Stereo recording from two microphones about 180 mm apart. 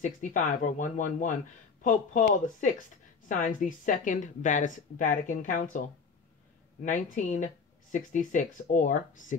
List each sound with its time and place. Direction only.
0.0 s a woman's voice: 45° left (ahead or behind)